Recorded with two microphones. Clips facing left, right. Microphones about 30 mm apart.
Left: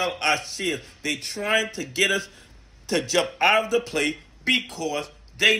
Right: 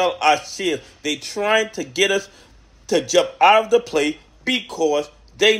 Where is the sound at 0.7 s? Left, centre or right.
Left.